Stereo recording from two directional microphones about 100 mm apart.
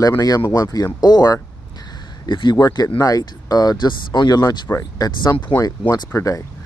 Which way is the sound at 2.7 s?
35° left (ahead or behind).